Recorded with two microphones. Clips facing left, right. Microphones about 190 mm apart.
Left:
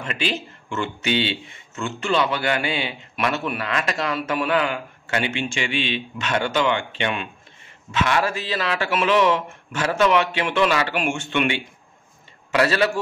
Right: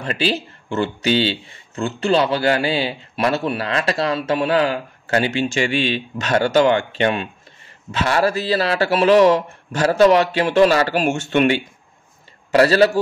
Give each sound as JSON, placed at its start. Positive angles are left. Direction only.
{"t": 0.0, "sound": "a man's voice", "side_deg": -35}